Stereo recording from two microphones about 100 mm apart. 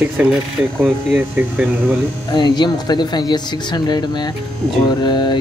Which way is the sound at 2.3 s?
45° left (ahead or behind).